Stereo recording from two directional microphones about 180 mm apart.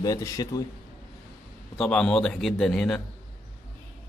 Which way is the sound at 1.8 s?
5° left (ahead or behind).